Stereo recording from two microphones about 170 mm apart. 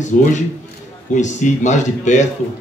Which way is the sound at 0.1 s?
50° left (ahead or behind).